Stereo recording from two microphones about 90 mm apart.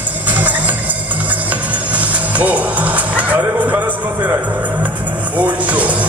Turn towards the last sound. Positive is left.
turn(degrees=-15)  # may be behind; listen again after turning